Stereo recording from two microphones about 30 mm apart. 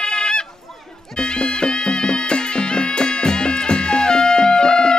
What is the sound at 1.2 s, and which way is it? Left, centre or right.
Music, left.